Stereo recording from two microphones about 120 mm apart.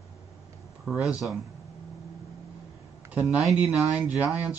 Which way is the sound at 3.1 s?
10° right (ahead or behind).